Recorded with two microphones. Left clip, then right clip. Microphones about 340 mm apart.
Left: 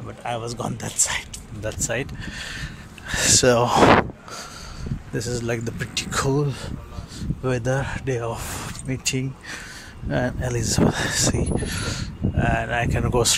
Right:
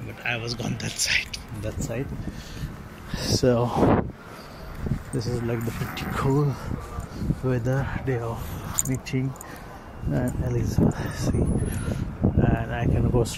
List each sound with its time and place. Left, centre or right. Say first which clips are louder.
0.2 s speech: even; left
0.7 s speech: right 4 dB; left
5.1 s speech: left 4 dB; left